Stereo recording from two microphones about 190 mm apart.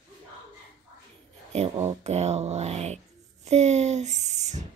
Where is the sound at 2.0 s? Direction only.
35° right (ahead or behind).